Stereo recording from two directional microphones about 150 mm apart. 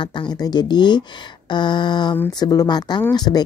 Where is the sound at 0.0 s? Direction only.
30° left (ahead or behind).